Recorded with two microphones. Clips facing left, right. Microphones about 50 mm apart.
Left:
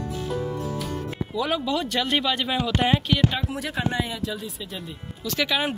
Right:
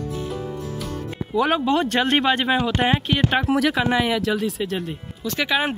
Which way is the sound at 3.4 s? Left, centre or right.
Right.